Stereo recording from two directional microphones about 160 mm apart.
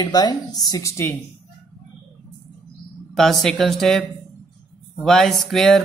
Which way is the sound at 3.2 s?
Centre (ahead or behind).